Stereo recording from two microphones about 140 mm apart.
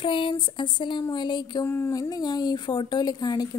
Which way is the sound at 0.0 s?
35° left (ahead or behind).